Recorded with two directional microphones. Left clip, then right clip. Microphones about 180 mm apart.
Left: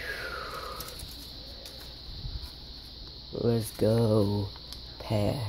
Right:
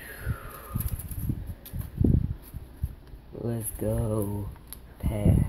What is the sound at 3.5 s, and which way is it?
Speech, 30° left (ahead or behind).